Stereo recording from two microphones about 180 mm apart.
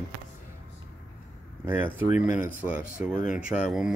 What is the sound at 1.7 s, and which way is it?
Speech, 10° right (ahead or behind).